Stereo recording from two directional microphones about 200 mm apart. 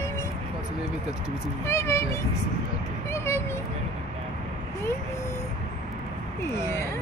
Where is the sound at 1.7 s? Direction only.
15° left (ahead or behind).